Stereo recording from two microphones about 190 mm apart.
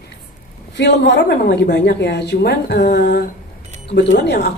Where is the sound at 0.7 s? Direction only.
65° left (ahead or behind).